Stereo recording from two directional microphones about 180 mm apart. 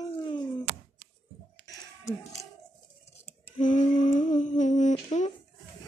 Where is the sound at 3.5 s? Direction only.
45° left (ahead or behind).